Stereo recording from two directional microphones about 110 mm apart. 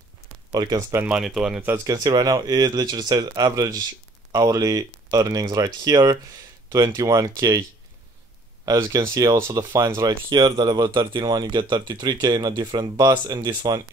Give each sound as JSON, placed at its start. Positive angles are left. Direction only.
{"t": 0.5, "sound": "speech", "side_deg": -35}
{"t": 1.0, "sound": "speech", "side_deg": -5}
{"t": 1.9, "sound": "speech", "side_deg": -35}
{"t": 8.6, "sound": "speech", "side_deg": -30}
{"t": 10.3, "sound": "speech", "side_deg": -45}